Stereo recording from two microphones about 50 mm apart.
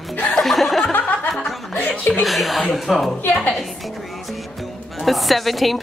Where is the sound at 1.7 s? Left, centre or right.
Left.